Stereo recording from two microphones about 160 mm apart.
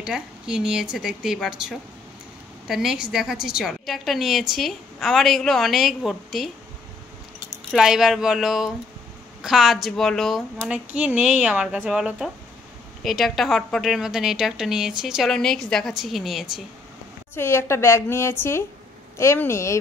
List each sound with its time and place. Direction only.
0.0 s a woman's voice: 5° right (ahead or behind)
7.7 s a woman's voice: 5° right (ahead or behind)
17.4 s a woman's voice: 15° left (ahead or behind)